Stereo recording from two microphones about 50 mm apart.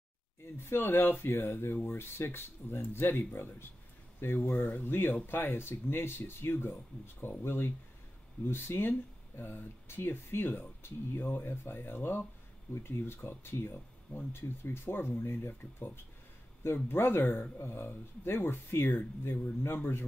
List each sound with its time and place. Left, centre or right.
0.7 s speech: left